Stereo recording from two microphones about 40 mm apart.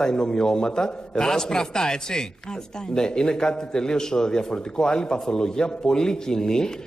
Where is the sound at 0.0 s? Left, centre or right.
Centre.